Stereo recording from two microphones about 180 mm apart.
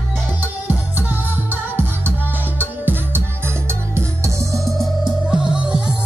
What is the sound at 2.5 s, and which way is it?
Music, 10° right (ahead or behind).